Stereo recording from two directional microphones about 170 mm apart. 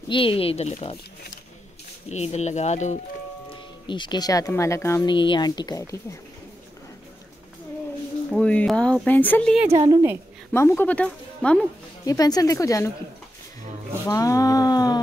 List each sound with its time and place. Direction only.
0.1 s speech: 30° left (ahead or behind)
2.0 s speech: 40° left (ahead or behind)
3.8 s speech: 25° left (ahead or behind)
5.0 s speech: 30° left (ahead or behind)
8.3 s speech: 5° left (ahead or behind)
9.7 s speech: 30° right (ahead or behind)
10.5 s speech: 15° left (ahead or behind)
12.0 s speech: 20° left (ahead or behind)
14.0 s a sound: 20° left (ahead or behind)